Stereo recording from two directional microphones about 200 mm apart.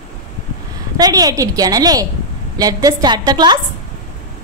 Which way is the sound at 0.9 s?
20° right (ahead or behind).